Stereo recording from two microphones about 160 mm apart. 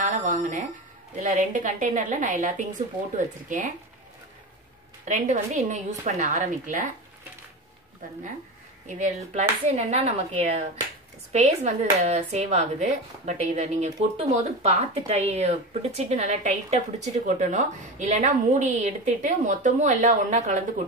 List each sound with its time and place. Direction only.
0.0 s a sound: 55° right (ahead or behind)
1.1 s speech: 55° right (ahead or behind)
5.0 s speech: 50° right (ahead or behind)
8.8 s speech: 50° right (ahead or behind)